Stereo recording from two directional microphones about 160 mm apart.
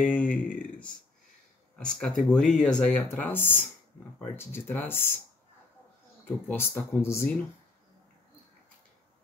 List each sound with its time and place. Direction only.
0.0 s a sound: 10° left (ahead or behind)
1.8 s speech: 5° left (ahead or behind)
6.2 s speech: 10° left (ahead or behind)